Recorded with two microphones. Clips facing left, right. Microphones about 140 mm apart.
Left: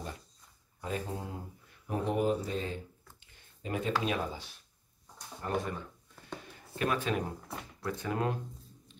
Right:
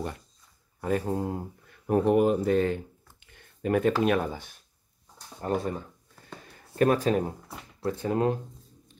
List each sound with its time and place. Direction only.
0.7 s speech: 55° right (ahead or behind)
1.9 s speech: 60° right (ahead or behind)
5.4 s speech: 35° right (ahead or behind)